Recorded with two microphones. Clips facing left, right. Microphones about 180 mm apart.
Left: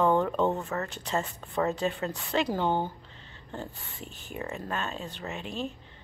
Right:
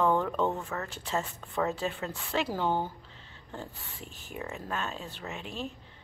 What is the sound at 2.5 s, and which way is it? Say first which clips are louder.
Speech: even; 20° left (ahead or behind).